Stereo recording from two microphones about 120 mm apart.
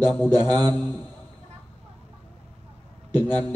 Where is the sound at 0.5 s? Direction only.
15° left (ahead or behind).